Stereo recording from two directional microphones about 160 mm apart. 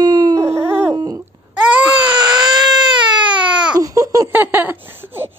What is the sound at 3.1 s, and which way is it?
Baby cry, 30° right (ahead or behind).